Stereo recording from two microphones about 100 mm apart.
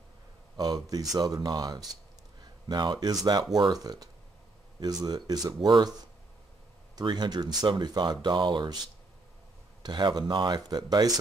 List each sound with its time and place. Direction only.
0.6 s speech: 40° right (ahead or behind)
9.8 s speech: 45° right (ahead or behind)